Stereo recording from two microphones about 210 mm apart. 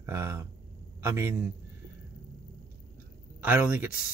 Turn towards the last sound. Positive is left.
turn(degrees=-10)  # may be behind; listen again after turning